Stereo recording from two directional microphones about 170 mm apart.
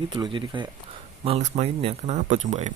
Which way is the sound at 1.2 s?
40° right (ahead or behind).